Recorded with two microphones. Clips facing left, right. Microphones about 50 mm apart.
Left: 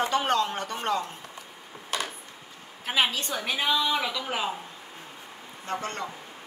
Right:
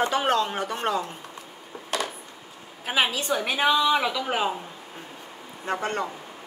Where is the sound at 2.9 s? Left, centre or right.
Centre.